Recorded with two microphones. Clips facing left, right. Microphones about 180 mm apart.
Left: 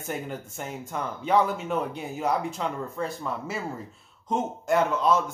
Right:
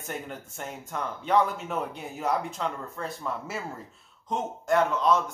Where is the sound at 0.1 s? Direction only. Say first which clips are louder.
Left 4 dB; 5° left (ahead or behind).